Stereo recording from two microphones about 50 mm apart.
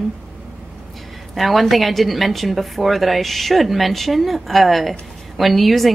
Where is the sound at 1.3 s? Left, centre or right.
Centre.